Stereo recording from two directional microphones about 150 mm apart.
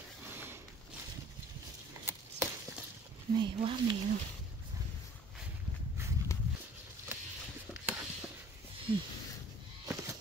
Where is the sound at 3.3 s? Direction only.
35° right (ahead or behind).